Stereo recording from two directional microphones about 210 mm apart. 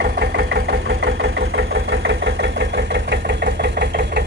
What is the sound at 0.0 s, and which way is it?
Engine, 50° right (ahead or behind).